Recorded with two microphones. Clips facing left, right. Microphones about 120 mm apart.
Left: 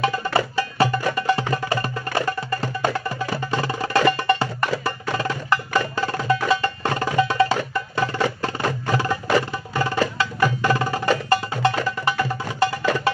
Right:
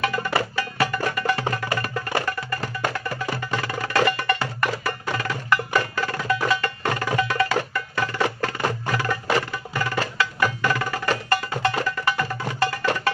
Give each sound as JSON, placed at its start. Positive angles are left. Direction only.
{"t": 0.0, "sound": "music", "side_deg": 25}